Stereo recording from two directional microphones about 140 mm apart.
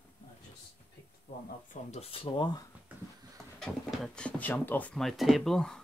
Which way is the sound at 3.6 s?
5° left (ahead or behind).